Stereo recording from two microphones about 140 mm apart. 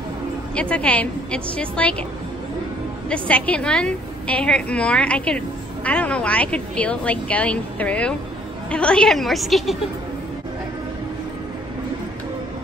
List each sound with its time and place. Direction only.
0.6 s a woman's voice: 10° left (ahead or behind)
3.1 s a woman's voice: 10° left (ahead or behind)